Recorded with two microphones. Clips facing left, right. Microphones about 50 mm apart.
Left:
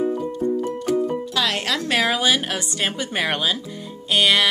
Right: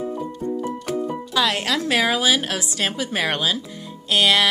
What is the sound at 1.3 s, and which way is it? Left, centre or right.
Speech, centre.